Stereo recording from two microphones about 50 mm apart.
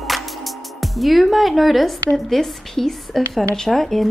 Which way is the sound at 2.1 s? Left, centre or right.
Centre.